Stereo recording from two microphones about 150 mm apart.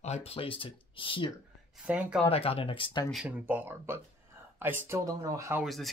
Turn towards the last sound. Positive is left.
turn(degrees=0)  # may be behind; listen again after turning